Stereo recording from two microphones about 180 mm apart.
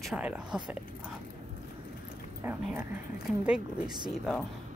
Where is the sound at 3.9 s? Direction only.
25° right (ahead or behind).